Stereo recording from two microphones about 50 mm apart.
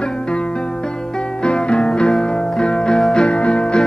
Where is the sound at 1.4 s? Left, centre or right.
Left.